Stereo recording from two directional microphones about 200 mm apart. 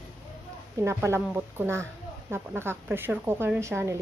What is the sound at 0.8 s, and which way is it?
Speech, 15° right (ahead or behind).